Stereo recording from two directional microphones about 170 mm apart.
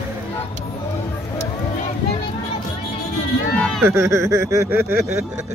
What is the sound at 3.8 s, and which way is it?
Speech, 15° right (ahead or behind).